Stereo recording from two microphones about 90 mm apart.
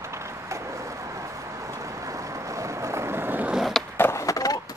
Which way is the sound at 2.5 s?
35° right (ahead or behind).